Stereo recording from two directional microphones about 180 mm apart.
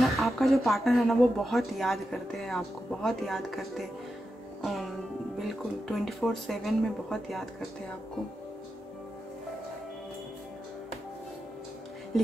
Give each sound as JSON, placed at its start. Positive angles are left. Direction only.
{"t": 0.0, "sound": "speech", "side_deg": 0}
{"t": 4.6, "sound": "music", "side_deg": 0}
{"t": 5.4, "sound": "speech", "side_deg": 0}